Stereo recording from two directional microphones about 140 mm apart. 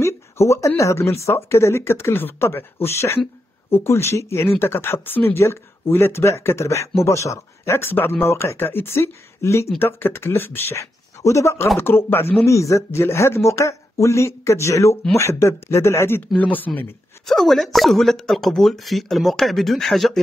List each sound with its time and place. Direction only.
0.0 s speech: 20° left (ahead or behind)
17.3 s speech: centre (ahead or behind)